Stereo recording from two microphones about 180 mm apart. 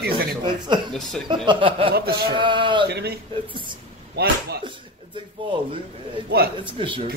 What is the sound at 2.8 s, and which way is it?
Speech, 65° right (ahead or behind).